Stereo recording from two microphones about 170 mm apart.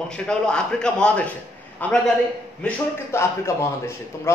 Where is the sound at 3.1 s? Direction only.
15° left (ahead or behind).